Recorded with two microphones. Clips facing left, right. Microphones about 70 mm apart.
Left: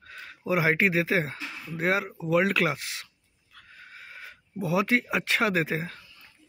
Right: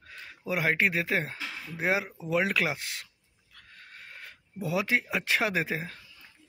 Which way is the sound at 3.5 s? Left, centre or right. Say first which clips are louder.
Left 3 dB; centre.